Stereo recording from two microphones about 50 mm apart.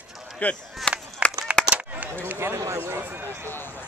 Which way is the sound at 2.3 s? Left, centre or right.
Right.